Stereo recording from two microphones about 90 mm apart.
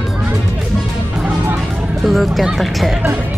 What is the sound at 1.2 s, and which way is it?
Music, 20° right (ahead or behind).